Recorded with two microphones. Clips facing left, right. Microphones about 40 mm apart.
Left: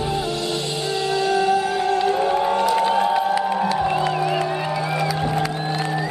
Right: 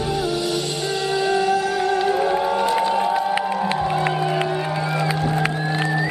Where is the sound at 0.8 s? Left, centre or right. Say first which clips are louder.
Left 1 dB; centre.